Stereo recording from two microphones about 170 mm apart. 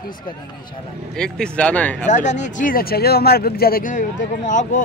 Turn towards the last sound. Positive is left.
turn(degrees=45)  # may be behind; listen again after turning